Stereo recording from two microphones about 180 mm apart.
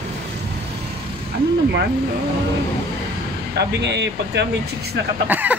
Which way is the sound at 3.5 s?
70° right (ahead or behind).